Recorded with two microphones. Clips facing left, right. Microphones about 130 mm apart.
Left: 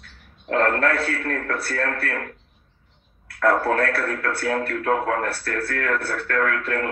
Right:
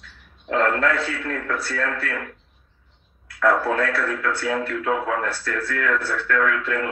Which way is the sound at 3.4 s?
45° left (ahead or behind).